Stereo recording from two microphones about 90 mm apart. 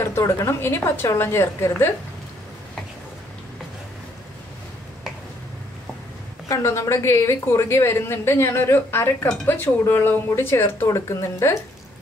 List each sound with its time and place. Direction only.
0.0 s a woman's voice: 30° left (ahead or behind)
6.5 s a woman's voice: 35° left (ahead or behind)